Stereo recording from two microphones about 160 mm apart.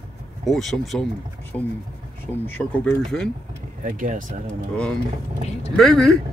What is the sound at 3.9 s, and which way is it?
Speech, 55° right (ahead or behind).